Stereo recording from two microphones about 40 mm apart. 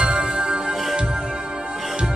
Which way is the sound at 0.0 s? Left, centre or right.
Right.